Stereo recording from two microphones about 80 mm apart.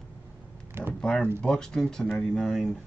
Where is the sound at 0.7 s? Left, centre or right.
Right.